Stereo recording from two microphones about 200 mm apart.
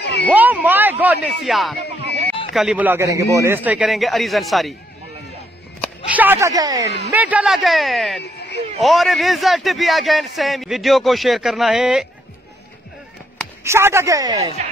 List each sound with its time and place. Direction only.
0.0 s a sound: 60° left (ahead or behind)
0.3 s a man's voice: 10° right (ahead or behind)
6.0 s a woman's voice: 10° right (ahead or behind)
7.1 s a man's voice: 10° right (ahead or behind)
8.2 s a sound: 55° left (ahead or behind)
8.7 s a man's voice: centre (ahead or behind)
13.7 s a woman's voice: 15° right (ahead or behind)